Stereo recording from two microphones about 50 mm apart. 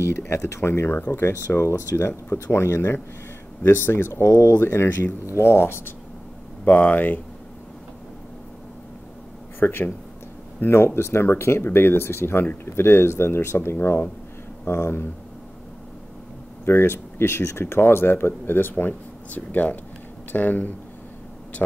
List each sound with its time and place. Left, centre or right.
0.3 s speech: left
1.5 s speech: left
6.6 s speech: left
9.6 s speech: left
11.0 s speech: left
16.6 s speech: left
19.3 s speech: left